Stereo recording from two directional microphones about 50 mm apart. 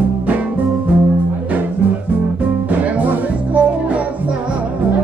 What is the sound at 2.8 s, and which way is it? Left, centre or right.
Music, right.